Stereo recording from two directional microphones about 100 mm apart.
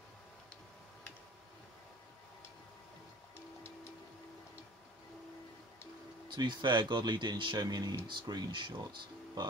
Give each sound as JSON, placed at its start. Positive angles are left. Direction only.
{"t": 6.2, "sound": "speech", "side_deg": -50}